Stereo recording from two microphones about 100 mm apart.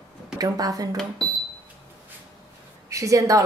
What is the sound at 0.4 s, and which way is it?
Speech, 40° right (ahead or behind).